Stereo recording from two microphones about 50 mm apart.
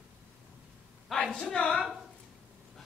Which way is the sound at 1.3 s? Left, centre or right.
Centre.